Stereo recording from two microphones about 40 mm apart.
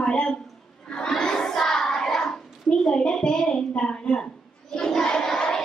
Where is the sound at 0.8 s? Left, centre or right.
Centre.